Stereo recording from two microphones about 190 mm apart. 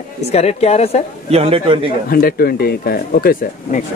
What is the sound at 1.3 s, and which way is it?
Speech, 30° right (ahead or behind).